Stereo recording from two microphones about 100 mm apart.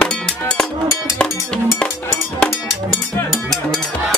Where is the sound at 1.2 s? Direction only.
10° left (ahead or behind).